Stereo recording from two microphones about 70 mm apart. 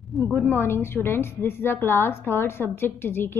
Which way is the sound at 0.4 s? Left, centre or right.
Left.